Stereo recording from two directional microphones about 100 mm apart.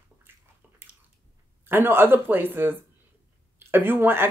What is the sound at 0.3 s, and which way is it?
Bathtub, 25° right (ahead or behind).